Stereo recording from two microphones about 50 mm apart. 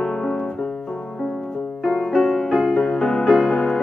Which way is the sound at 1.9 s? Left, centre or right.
Centre.